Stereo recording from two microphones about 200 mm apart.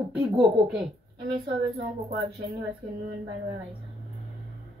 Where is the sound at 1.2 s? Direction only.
25° right (ahead or behind).